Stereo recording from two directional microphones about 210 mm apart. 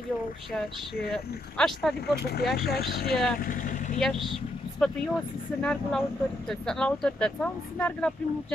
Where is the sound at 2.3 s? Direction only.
50° left (ahead or behind).